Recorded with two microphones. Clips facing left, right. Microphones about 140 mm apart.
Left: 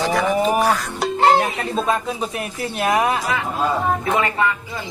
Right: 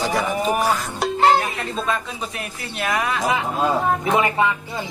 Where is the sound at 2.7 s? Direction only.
30° left (ahead or behind).